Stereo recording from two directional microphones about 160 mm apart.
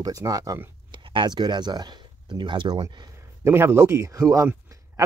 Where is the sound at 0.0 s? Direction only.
20° right (ahead or behind).